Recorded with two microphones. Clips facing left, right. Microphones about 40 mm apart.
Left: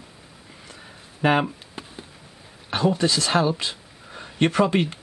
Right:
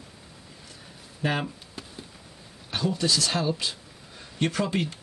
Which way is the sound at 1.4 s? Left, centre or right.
Left.